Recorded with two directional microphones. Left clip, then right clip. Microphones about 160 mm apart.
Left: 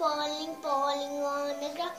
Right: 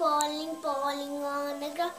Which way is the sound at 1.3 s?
15° right (ahead or behind).